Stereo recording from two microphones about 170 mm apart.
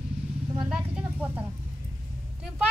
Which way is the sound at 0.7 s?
5° right (ahead or behind).